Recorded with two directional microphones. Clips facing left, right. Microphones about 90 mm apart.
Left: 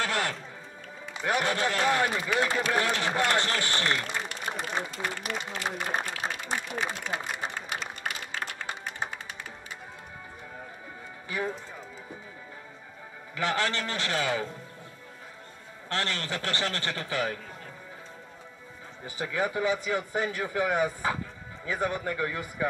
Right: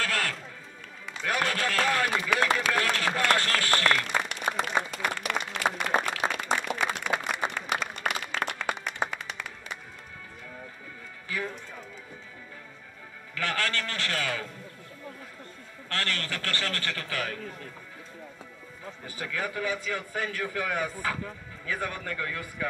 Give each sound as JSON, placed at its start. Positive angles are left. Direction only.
{"t": 0.0, "sound": "music", "side_deg": 20}
{"t": 1.1, "sound": "a man's voice", "side_deg": 20}
{"t": 2.2, "sound": "speech", "side_deg": -80}
{"t": 2.7, "sound": "a man's voice", "side_deg": 20}
{"t": 3.7, "sound": "applause", "side_deg": -65}
{"t": 11.2, "sound": "music", "side_deg": 20}
{"t": 13.3, "sound": "a man's voice", "side_deg": 20}
{"t": 15.9, "sound": "a man's voice", "side_deg": 20}
{"t": 19.0, "sound": "a man's voice", "side_deg": 20}